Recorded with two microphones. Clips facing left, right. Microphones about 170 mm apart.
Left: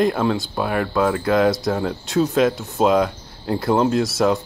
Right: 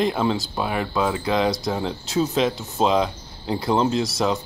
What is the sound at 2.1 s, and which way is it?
Speech, centre (ahead or behind).